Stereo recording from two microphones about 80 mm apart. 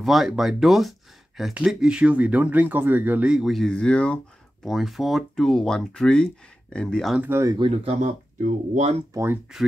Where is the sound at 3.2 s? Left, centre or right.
Centre.